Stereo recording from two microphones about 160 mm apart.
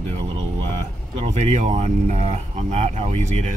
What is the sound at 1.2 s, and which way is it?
Speech, 45° right (ahead or behind).